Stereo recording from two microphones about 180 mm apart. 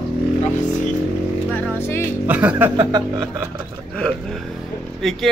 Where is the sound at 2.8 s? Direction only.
25° right (ahead or behind).